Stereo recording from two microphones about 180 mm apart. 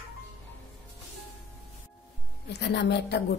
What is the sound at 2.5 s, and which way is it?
Speech, 70° left (ahead or behind).